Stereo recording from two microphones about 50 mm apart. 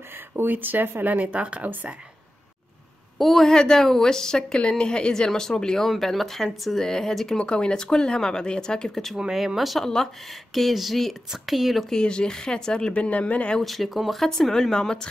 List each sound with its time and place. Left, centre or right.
0.4 s speech: right
1.0 s speech: right
3.2 s speech: centre
3.4 s speech: centre
7.3 s speech: centre
11.9 s speech: centre
13.6 s speech: centre